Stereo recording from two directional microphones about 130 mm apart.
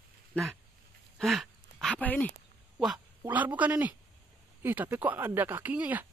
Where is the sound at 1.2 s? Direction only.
Centre (ahead or behind).